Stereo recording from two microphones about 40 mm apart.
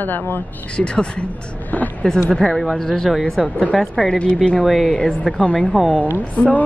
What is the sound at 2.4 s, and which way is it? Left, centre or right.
Speech, centre.